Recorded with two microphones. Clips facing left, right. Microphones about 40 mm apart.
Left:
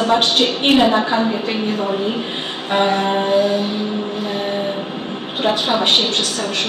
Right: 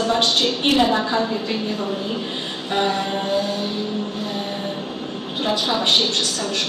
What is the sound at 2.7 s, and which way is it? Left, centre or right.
Speech, left.